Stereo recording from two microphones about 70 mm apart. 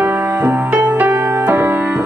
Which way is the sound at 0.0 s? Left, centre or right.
Right.